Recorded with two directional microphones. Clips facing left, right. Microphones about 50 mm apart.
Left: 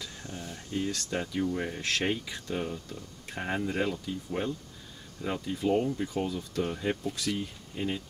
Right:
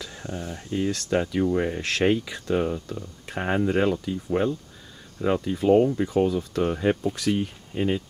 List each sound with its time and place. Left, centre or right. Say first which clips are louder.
0.2 s speech: right 7 dB; right
2.0 s speech: right 10 dB; right
2.3 s speech: right 9 dB; right
3.5 s speech: right 8 dB; right
4.0 s speech: right 8 dB; right